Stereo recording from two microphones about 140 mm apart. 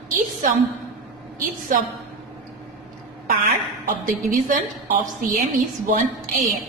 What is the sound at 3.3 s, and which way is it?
A woman's voice, 85° right.